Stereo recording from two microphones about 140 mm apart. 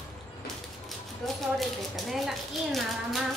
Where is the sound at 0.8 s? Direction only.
Centre (ahead or behind).